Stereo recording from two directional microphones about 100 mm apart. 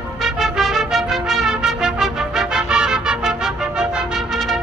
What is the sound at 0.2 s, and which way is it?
Music, centre (ahead or behind).